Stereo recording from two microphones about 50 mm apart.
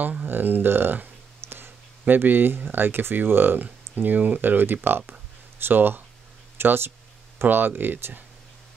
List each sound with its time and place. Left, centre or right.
0.2 s speech: right